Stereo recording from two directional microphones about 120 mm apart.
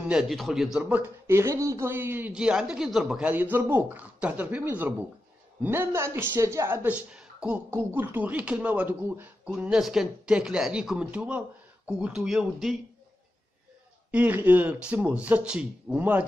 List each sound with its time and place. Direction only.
0.1 s a man's voice: 5° right (ahead or behind)
1.2 s a man's voice: 20° right (ahead or behind); by 12.7 s centre (ahead or behind)
14.1 s a man's voice: 15° right (ahead or behind)